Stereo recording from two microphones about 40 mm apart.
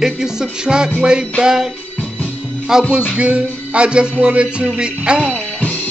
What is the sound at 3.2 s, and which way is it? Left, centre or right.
Speech, right.